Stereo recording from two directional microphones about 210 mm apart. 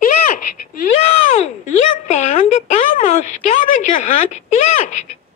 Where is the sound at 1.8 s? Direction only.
35° left (ahead or behind).